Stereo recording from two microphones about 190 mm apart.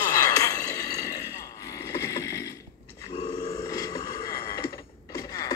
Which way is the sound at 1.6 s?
15° left (ahead or behind).